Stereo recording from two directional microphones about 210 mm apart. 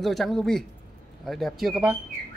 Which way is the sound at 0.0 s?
Centre (ahead or behind).